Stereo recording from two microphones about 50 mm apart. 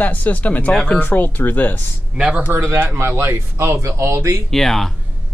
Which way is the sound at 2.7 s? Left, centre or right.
Right.